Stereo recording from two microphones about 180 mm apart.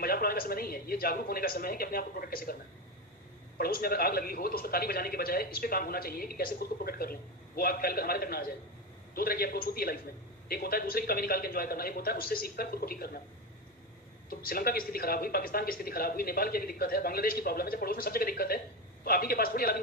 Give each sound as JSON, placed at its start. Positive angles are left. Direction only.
{"t": 0.0, "sound": "a man's voice", "side_deg": 55}
{"t": 3.5, "sound": "a man's voice", "side_deg": 55}
{"t": 14.3, "sound": "a man's voice", "side_deg": 55}